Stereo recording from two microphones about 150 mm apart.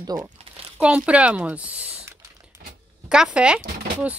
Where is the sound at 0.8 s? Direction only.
10° right (ahead or behind).